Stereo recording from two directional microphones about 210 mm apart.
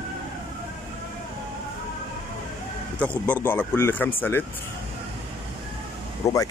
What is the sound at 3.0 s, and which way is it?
Speech, 5° left (ahead or behind).